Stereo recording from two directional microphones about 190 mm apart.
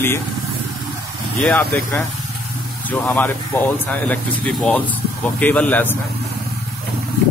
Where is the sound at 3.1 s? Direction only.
10° left (ahead or behind).